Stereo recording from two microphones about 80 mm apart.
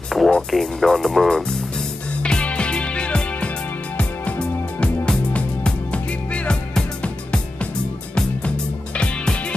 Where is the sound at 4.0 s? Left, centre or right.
Centre.